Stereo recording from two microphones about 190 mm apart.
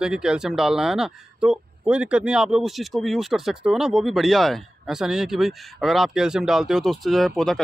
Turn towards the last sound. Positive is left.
turn(degrees=0)  # may be behind; listen again after turning